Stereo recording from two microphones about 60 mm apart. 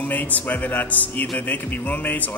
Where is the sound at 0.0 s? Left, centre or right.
Left.